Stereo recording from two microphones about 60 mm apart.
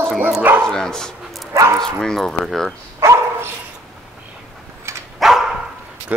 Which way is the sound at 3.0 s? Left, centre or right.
Right.